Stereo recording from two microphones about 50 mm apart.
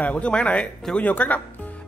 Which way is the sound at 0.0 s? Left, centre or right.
Left.